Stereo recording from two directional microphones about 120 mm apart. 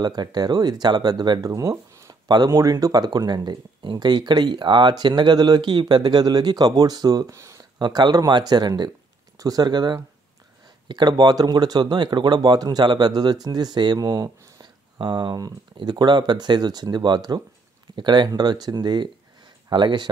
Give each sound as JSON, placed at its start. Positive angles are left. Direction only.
{"t": 0.0, "sound": "speech", "side_deg": -35}
{"t": 7.8, "sound": "speech", "side_deg": -35}